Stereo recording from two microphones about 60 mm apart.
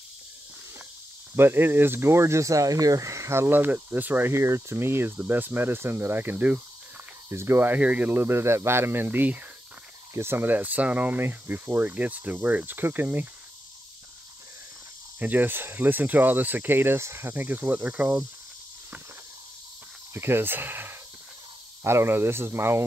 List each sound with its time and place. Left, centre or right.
1.3 s speech: right
3.5 s speech: right
4.4 s speech: right
7.2 s speech: right
10.1 s speech: right
10.4 s cricket: right
11.2 s speech: right
11.8 s cricket: right
15.1 s speech: right
17.8 s cricket: right
20.2 s speech: right